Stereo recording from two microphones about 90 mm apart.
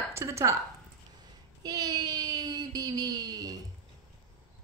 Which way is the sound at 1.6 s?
45° right (ahead or behind).